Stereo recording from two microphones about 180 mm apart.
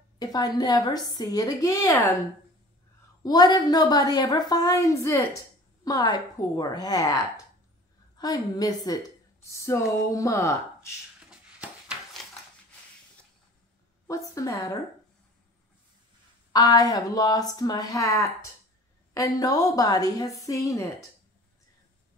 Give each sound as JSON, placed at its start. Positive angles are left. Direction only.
{"t": 0.2, "sound": "a woman's voice", "side_deg": 20}
{"t": 3.3, "sound": "a woman's voice", "side_deg": 20}
{"t": 8.2, "sound": "a woman's voice", "side_deg": 20}
{"t": 9.5, "sound": "a sound", "side_deg": 15}
{"t": 10.1, "sound": "speech", "side_deg": 15}
{"t": 11.2, "sound": "a sound", "side_deg": -5}
{"t": 14.0, "sound": "a woman's voice", "side_deg": 20}
{"t": 16.5, "sound": "a woman's voice", "side_deg": 20}